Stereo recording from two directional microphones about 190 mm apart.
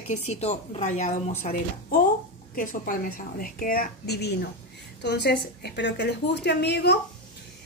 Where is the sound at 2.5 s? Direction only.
45° left (ahead or behind).